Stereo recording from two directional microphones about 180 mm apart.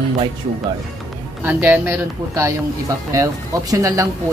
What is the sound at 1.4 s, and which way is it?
Speech, 10° right (ahead or behind).